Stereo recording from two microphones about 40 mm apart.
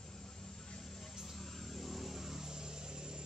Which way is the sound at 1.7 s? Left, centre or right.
Centre.